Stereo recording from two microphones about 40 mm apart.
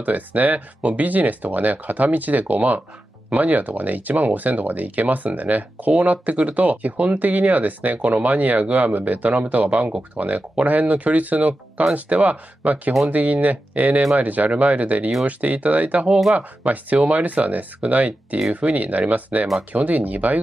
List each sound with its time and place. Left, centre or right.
0.0 s speech: right